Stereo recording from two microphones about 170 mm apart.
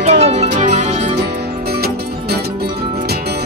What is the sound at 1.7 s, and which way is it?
Music, 70° right (ahead or behind).